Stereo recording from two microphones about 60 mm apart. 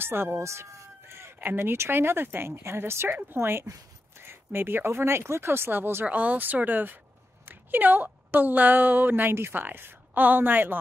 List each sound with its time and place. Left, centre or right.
0.0 s speech: right
0.4 s speech: right
6.0 s speech: right